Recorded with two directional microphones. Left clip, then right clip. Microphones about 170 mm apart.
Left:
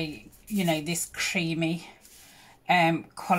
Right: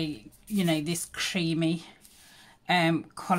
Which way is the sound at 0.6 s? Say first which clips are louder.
Left 1 dB; 35° right (ahead or behind).